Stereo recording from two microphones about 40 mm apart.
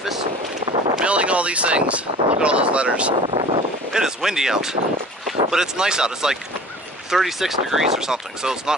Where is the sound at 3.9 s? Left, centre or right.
Centre.